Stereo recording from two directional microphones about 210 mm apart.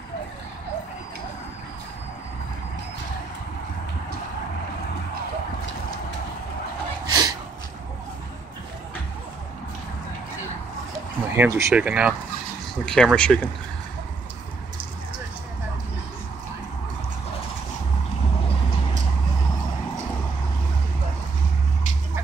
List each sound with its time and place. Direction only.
7.1 s gasp: 20° right (ahead or behind)
11.3 s speech: 10° right (ahead or behind); by 13.5 s 5° left (ahead or behind)